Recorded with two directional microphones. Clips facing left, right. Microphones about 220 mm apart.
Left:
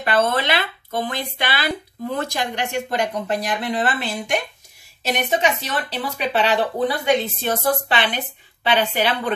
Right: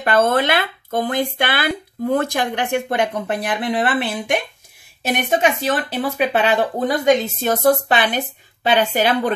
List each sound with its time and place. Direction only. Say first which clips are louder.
0.0 s speech: right 4 dB; 50° right (ahead or behind)